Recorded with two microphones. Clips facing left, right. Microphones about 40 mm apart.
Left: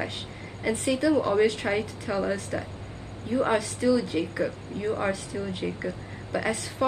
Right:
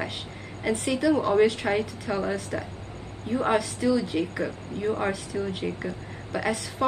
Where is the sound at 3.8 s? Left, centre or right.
Centre.